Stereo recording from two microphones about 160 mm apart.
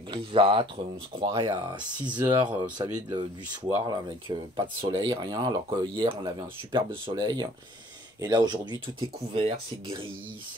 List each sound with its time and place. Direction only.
0.1 s speech: 30° right (ahead or behind)